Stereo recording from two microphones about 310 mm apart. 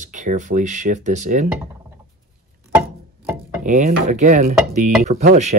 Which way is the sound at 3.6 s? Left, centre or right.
Right.